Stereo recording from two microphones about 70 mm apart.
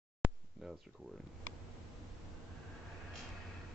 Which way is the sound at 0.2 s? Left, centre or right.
Centre.